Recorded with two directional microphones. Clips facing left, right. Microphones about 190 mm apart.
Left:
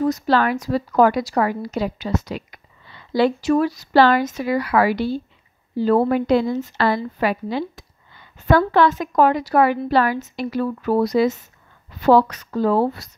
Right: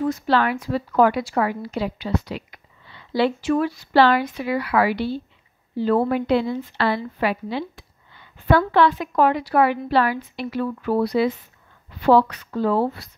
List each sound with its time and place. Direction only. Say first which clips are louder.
0.0 s a woman's voice: left 2 dB; 40° left (ahead or behind)